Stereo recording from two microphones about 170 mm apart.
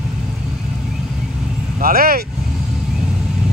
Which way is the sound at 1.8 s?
60° right (ahead or behind).